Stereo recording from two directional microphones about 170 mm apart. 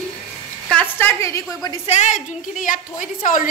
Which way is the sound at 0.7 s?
10° left (ahead or behind).